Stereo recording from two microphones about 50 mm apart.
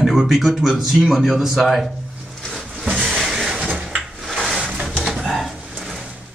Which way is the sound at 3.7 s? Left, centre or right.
Centre.